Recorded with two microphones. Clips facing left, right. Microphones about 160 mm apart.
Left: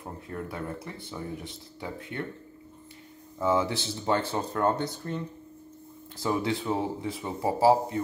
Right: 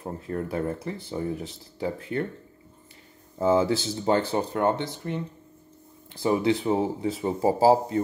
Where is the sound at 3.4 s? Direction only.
30° right (ahead or behind).